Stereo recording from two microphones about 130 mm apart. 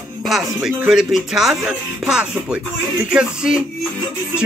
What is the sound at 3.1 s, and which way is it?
Speech, 5° right (ahead or behind).